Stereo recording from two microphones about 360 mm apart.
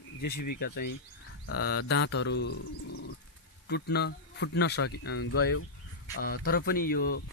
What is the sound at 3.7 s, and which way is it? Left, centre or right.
Speech, left.